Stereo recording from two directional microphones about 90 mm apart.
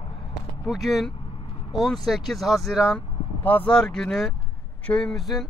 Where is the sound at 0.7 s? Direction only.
Centre (ahead or behind).